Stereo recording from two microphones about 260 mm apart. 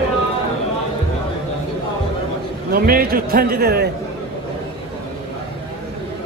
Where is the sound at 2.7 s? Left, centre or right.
Right.